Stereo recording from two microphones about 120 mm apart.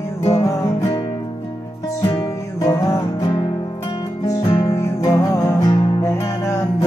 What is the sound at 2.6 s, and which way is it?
Music, 30° left (ahead or behind).